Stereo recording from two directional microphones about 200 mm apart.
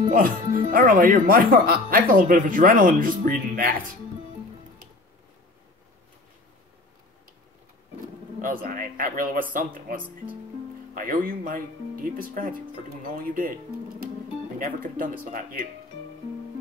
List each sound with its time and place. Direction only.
0.1 s speech: 45° right (ahead or behind)
8.4 s speech: 45° right (ahead or behind)